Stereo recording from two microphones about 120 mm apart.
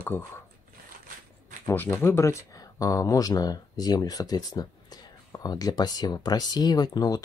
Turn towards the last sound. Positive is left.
turn(degrees=35)  # may be behind; listen again after turning